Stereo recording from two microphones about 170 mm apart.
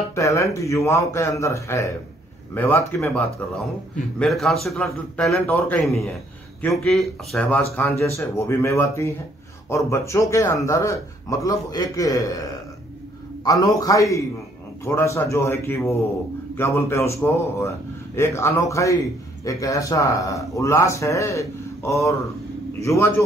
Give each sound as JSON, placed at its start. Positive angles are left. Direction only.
{"t": 0.1, "sound": "a man's voice", "side_deg": 20}
{"t": 5.5, "sound": "speech", "side_deg": 15}
{"t": 5.8, "sound": "a man's voice", "side_deg": 0}
{"t": 7.7, "sound": "a man's voice", "side_deg": 15}